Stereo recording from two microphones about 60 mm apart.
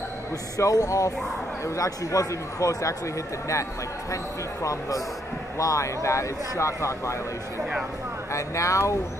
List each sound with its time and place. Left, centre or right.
0.6 s speech: left
1.8 s speech: left
4.6 s speech: left
8.3 s speech: left